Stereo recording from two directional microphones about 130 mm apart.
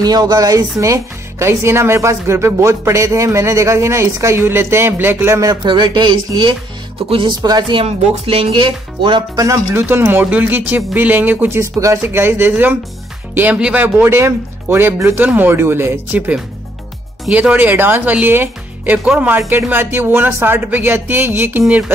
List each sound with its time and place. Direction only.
0.0 s speech: 30° right (ahead or behind)
7.8 s speech: 50° right (ahead or behind)
9.3 s speech: 25° right (ahead or behind)